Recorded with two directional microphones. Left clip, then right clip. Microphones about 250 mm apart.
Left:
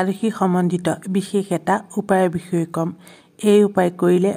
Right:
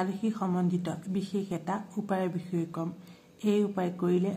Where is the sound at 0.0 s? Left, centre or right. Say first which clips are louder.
Left 12 dB; left.